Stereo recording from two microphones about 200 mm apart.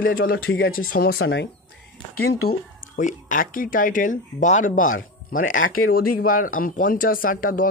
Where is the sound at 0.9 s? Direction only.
50° left (ahead or behind).